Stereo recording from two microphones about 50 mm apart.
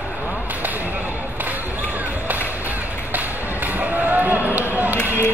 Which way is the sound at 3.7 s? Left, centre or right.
Right.